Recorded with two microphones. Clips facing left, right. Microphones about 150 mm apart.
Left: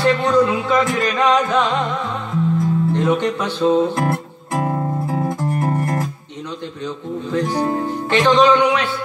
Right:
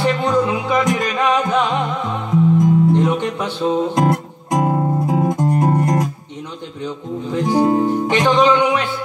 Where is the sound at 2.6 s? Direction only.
15° right (ahead or behind).